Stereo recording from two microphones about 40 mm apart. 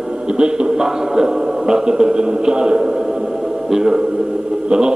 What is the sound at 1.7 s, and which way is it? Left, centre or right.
A man's voice, centre.